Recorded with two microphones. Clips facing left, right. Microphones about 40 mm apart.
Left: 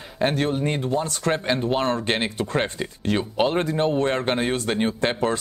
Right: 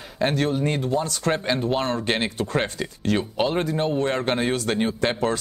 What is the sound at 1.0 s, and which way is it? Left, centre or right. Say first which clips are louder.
Speech: even; left.